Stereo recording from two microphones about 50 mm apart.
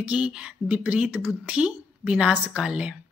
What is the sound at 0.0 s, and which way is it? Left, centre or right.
A woman's voice, right.